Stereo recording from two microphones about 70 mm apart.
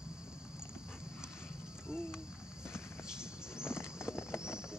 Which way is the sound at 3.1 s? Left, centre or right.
Centre.